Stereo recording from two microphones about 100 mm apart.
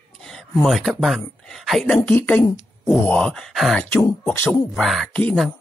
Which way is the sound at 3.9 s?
25° left (ahead or behind).